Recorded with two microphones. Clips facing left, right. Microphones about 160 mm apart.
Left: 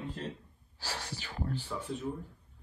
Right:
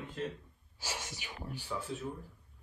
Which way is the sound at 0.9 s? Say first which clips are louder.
Left 3 dB; 15° right (ahead or behind).